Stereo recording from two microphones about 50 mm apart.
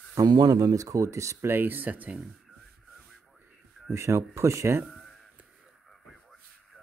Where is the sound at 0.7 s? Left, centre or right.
Right.